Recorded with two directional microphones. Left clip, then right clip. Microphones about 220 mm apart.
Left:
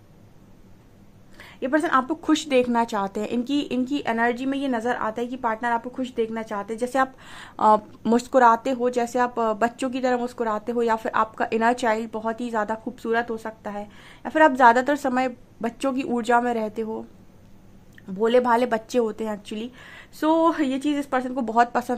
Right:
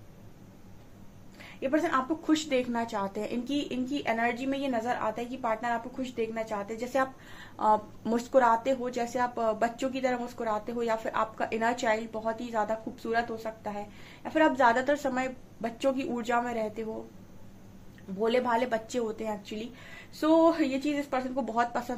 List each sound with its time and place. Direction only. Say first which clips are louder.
1.4 s a woman's voice: left 5 dB; 45° left (ahead or behind)
18.2 s a woman's voice: left 8 dB; 45° left (ahead or behind)